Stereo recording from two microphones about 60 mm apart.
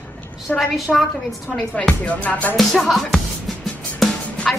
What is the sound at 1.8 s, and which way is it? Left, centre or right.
Music, centre.